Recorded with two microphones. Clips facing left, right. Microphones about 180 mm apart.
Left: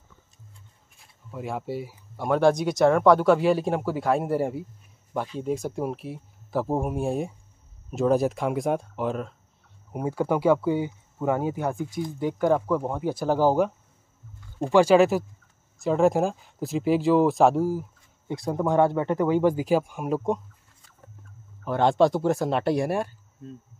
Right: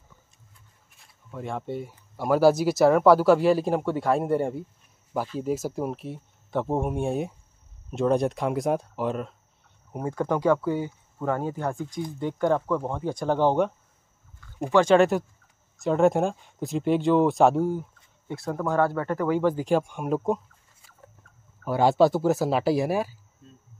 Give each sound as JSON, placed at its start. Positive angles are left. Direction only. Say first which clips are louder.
{"t": 1.3, "sound": "speech", "louder": "left 1 dB", "side_deg": 5}
{"t": 18.3, "sound": "speech", "louder": "left 3 dB", "side_deg": 15}
{"t": 21.6, "sound": "speech", "louder": "right 1 dB", "side_deg": -5}